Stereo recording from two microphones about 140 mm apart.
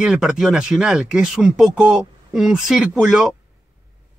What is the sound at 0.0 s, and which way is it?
Speech, 5° right (ahead or behind).